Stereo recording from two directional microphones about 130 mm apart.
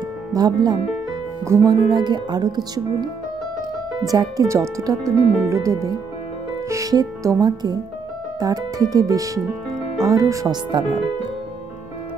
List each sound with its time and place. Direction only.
0.3 s speech: 30° right (ahead or behind)